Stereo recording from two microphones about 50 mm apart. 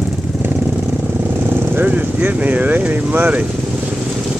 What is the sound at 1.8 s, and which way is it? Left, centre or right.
Vehicle, right.